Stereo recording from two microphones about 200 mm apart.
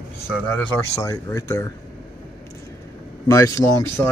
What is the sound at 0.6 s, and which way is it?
Speech, 15° left (ahead or behind).